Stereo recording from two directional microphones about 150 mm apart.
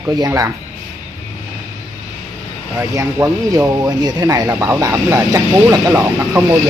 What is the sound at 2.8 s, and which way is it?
Speech, 20° right (ahead or behind).